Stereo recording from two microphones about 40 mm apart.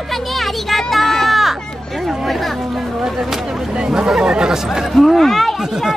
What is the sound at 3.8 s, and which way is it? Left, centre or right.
Speech, centre.